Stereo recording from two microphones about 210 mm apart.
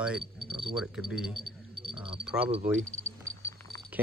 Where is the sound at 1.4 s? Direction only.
25° right (ahead or behind).